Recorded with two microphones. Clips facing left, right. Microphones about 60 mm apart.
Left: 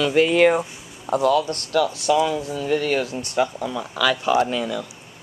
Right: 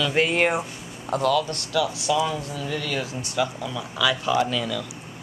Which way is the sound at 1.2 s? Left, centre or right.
Left.